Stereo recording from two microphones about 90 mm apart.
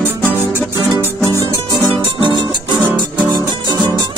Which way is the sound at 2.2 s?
60° right (ahead or behind).